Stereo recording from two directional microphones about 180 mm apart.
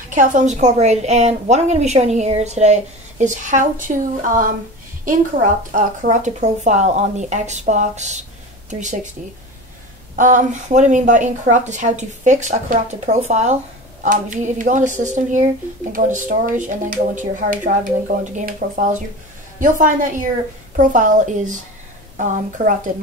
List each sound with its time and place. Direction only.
0.1 s a woman's voice: 45° right (ahead or behind)
10.1 s a woman's voice: 45° right (ahead or behind)